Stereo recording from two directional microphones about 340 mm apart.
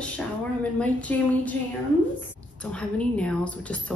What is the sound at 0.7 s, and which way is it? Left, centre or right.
Speech, centre.